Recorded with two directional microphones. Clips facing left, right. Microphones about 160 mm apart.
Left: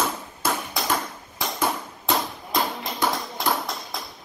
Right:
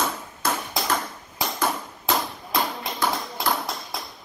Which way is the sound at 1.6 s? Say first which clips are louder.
Left 1 dB; centre (ahead or behind).